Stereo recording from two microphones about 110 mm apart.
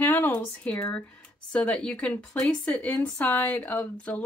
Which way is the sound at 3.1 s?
15° left (ahead or behind).